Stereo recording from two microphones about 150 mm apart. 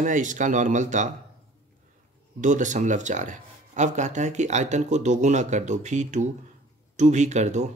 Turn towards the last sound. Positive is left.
turn(degrees=-50)  # may be behind; listen again after turning